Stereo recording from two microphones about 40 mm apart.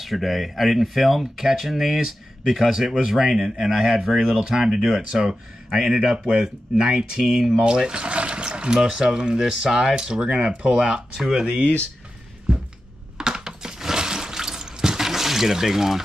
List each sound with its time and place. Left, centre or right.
0.0 s speech: centre
6.1 s speech: right
13.2 s a sound: centre